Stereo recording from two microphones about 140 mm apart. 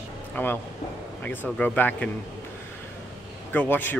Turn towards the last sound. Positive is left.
turn(degrees=15)  # may be behind; listen again after turning